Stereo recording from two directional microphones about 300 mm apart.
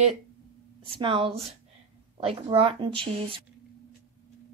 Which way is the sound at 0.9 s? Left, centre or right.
Centre.